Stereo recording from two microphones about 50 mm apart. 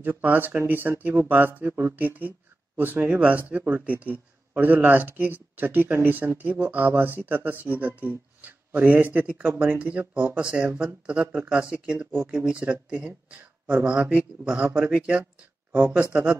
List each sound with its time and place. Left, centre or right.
0.0 s speech: right
2.0 s speech: right